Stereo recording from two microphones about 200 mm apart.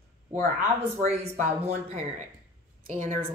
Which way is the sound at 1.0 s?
35° right (ahead or behind).